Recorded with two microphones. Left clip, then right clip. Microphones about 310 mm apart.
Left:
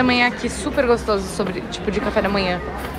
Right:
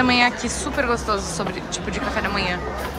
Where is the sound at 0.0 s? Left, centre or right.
Centre.